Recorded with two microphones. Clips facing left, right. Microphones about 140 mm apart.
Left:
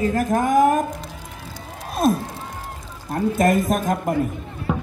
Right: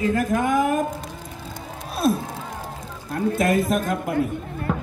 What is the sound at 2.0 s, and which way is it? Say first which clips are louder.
Speech: left 2 dB; 45° left (ahead or behind).